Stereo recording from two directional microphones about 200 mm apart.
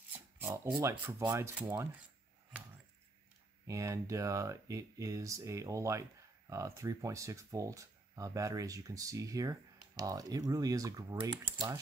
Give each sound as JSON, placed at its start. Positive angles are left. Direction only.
{"t": 0.4, "sound": "speech", "side_deg": -15}
{"t": 3.6, "sound": "speech", "side_deg": -15}